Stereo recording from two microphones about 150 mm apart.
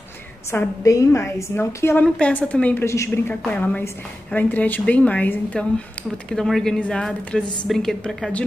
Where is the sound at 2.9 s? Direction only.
20° left (ahead or behind).